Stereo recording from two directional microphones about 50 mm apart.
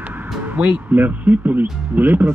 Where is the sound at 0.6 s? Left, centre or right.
Right.